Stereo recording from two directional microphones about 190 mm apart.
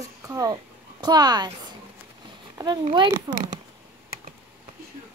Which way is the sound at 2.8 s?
30° right (ahead or behind).